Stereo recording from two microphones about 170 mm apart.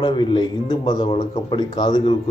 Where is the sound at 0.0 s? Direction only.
25° left (ahead or behind).